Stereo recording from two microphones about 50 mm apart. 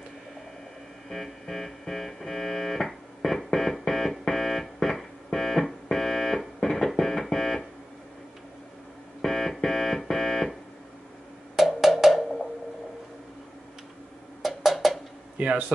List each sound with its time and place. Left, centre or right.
1.0 s music: centre
9.2 s synthesizer: centre
11.5 s music: centre
14.4 s percussion: centre
15.3 s a sound: right